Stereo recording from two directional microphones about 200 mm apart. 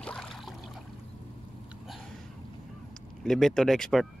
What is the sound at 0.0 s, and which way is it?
Boat, 5° left (ahead or behind).